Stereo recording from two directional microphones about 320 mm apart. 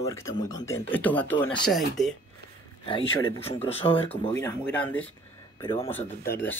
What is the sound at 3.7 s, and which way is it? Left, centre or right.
Speech, centre.